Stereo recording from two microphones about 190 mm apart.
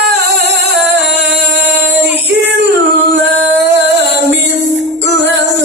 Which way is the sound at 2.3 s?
65° right (ahead or behind).